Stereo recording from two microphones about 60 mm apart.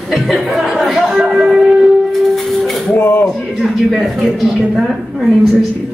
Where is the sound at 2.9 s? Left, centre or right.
Left.